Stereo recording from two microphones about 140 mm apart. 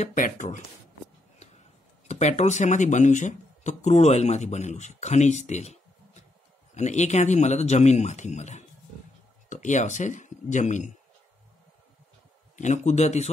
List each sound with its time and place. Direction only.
0.0 s speech: 65° left (ahead or behind)
2.0 s speech: 55° left (ahead or behind)
12.5 s speech: 60° left (ahead or behind)